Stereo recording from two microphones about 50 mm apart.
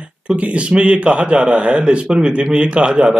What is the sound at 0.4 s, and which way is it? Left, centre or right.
A man's voice, right.